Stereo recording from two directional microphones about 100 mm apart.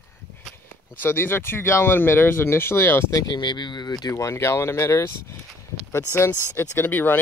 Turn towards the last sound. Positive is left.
turn(degrees=20)  # may be behind; listen again after turning